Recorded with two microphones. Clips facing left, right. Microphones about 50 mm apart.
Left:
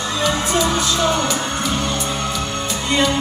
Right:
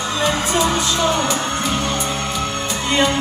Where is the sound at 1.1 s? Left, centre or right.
Right.